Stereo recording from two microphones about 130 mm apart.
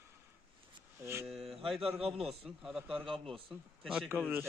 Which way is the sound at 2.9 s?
45° right (ahead or behind).